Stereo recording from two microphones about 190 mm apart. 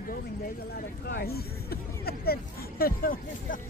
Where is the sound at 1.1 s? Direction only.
55° left (ahead or behind).